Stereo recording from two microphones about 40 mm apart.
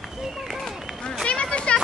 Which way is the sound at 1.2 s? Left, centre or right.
Left.